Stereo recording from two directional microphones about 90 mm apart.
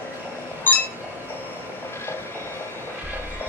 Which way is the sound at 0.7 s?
20° left (ahead or behind).